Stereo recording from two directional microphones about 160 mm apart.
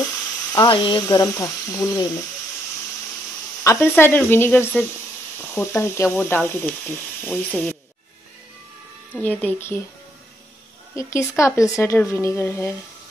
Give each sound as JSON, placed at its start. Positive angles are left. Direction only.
{"t": 0.0, "sound": "speech", "side_deg": 25}
{"t": 3.6, "sound": "speech", "side_deg": 15}
{"t": 9.2, "sound": "speech", "side_deg": 10}
{"t": 11.0, "sound": "speech", "side_deg": 20}